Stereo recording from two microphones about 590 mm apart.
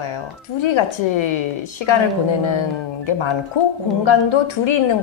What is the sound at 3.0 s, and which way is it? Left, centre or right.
A woman's voice, left.